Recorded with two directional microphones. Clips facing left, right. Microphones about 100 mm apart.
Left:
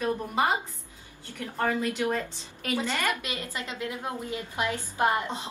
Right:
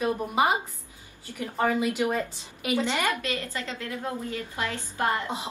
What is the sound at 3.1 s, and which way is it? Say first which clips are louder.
A woman's voice: right 2 dB; 20° left (ahead or behind).